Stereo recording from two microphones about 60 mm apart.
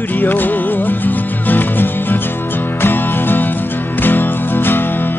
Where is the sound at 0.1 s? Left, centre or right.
Left.